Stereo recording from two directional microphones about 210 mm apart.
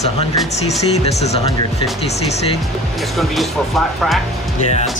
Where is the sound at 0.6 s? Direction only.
30° left (ahead or behind).